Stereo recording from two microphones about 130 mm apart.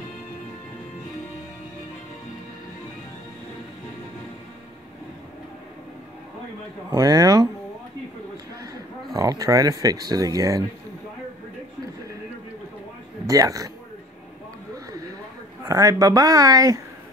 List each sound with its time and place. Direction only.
6.9 s speech: 30° right (ahead or behind)
9.1 s speech: 30° right (ahead or behind)
13.3 s speech: 25° right (ahead or behind)
15.6 s speech: 25° right (ahead or behind)